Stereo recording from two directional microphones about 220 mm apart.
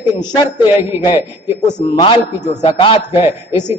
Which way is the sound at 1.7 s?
20° left (ahead or behind).